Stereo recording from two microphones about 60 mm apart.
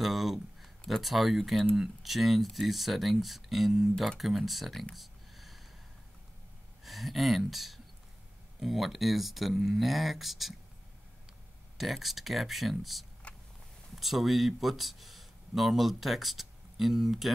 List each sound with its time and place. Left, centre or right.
0.0 s speech: centre
4.9 s a sound: centre
6.8 s speech: centre
11.8 s speech: centre
13.2 s vehicle: left
13.9 s speech: centre